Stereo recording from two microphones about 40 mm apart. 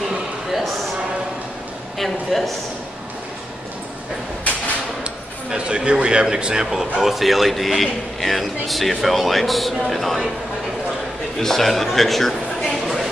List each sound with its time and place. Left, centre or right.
2.0 s a man's voice: centre
5.5 s a man's voice: right; by 10.3 s centre
11.3 s speech: centre